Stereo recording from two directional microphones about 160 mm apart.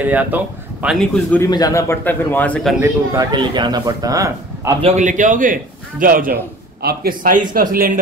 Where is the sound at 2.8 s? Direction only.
20° right (ahead or behind).